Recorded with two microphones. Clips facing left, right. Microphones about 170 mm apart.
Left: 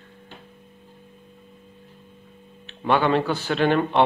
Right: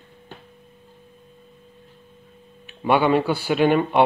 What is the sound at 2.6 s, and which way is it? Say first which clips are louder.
Speech: right 2 dB; 10° right (ahead or behind).